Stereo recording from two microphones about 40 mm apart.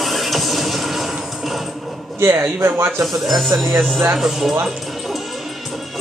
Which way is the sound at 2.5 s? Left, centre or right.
Right.